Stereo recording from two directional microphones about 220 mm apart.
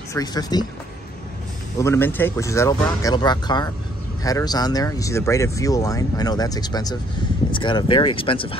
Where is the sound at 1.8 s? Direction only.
10° left (ahead or behind).